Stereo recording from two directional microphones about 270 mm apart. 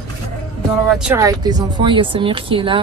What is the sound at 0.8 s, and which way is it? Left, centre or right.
Speech, centre.